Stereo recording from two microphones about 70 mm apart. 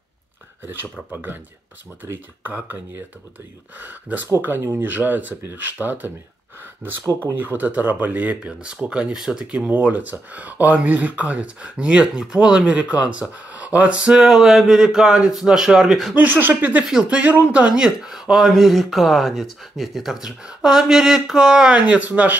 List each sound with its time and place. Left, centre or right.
1.1 s speech: right
2.5 s speech: right
4.4 s speech: right
7.3 s speech: right; by 16.2 s centre
16.2 s speech: right
16.8 s speech: centre; by 22.4 s right